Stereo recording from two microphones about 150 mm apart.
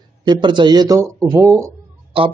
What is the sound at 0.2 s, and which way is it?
A man's voice, 30° right (ahead or behind).